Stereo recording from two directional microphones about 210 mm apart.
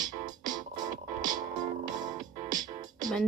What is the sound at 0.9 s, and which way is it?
Music, 40° right (ahead or behind).